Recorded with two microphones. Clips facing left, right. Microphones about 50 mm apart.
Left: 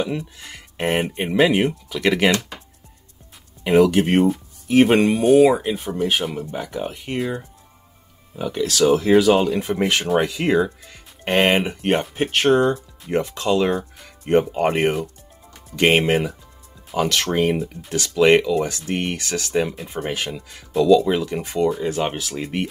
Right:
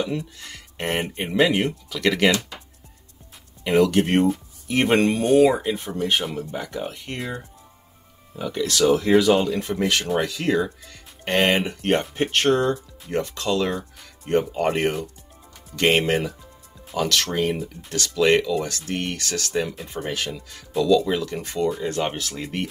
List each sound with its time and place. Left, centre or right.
0.0 s speech: centre
3.6 s speech: centre
8.4 s speech: centre
21.6 s speech: centre